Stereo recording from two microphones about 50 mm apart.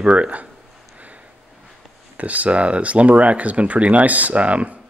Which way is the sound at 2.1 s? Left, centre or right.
Right.